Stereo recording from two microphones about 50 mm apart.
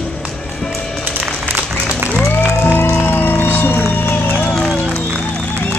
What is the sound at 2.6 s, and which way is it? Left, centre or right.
Music, left.